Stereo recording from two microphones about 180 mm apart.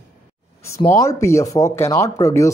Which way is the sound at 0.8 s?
15° left (ahead or behind).